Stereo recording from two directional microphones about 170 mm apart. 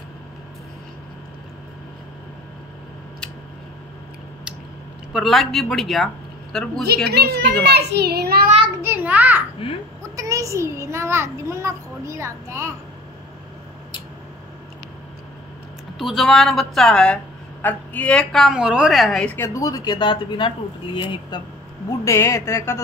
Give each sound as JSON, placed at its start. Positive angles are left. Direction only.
{"t": 5.1, "sound": "a woman's voice", "side_deg": 0}
{"t": 7.1, "sound": "a child's voice", "side_deg": -70}
{"t": 8.8, "sound": "a child's voice", "side_deg": -10}
{"t": 9.6, "sound": "a child's voice", "side_deg": 30}
{"t": 10.1, "sound": "a child's voice", "side_deg": -20}
{"t": 16.0, "sound": "a woman's voice", "side_deg": 0}
{"t": 19.3, "sound": "speech", "side_deg": 15}
{"t": 22.0, "sound": "speech", "side_deg": 15}